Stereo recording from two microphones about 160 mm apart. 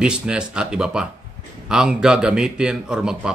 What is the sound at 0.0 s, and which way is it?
Speech, 5° right (ahead or behind).